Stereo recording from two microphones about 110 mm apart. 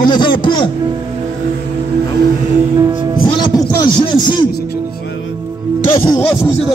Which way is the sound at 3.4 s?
45° left (ahead or behind).